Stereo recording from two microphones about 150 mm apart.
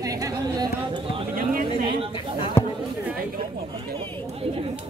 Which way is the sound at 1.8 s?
30° right (ahead or behind).